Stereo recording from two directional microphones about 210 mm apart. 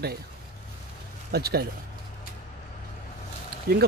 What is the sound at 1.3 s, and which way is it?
Speech, 50° right (ahead or behind).